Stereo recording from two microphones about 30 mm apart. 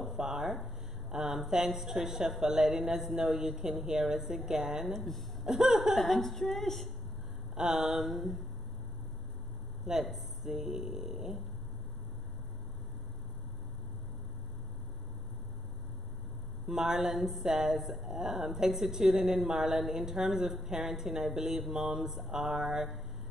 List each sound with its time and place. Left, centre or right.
0.0 s a sound: centre
1.1 s a woman's voice: right
4.9 s speech: centre
5.4 s laughter: centre
5.9 s a woman's voice: centre
7.5 s a woman's voice: centre
8.0 s a woman's voice: centre
10.1 s a woman's voice: centre
16.6 s a woman's voice: right
17.2 s a woman's voice: centre
17.5 s a woman's voice: centre
17.7 s a woman's voice: centre